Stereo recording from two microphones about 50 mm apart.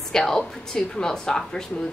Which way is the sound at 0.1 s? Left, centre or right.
Centre.